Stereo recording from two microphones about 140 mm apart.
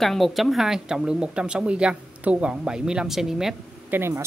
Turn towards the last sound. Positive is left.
turn(degrees=-20)  # may be behind; listen again after turning